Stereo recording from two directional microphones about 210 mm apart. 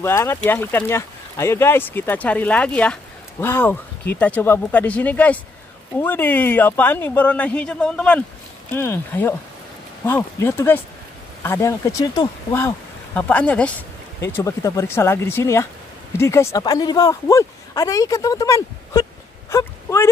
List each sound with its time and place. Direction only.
0.0 s speech: 10° left (ahead or behind)